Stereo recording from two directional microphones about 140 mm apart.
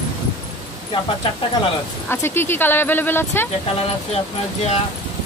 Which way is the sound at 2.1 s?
15° left (ahead or behind).